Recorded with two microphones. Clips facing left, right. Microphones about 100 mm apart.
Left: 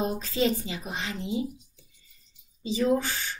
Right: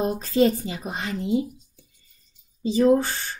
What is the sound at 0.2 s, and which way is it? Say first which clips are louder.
Speech: right 6 dB; 40° right (ahead or behind).